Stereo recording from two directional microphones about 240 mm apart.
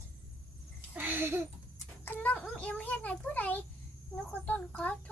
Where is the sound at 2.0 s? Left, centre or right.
Centre.